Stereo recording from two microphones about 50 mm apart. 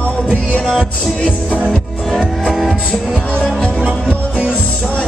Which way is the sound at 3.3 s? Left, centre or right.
Left.